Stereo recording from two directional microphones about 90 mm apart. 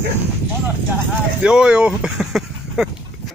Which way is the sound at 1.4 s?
10° right (ahead or behind).